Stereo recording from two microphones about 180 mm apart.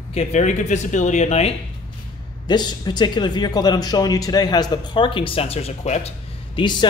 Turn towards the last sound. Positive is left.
turn(degrees=30)  # may be behind; listen again after turning